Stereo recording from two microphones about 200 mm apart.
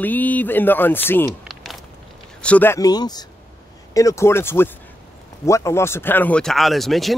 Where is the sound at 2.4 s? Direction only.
5° left (ahead or behind).